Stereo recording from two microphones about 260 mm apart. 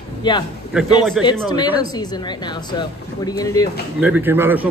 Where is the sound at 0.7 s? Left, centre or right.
Centre.